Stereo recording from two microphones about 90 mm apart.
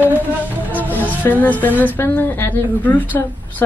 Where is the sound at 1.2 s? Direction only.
20° left (ahead or behind).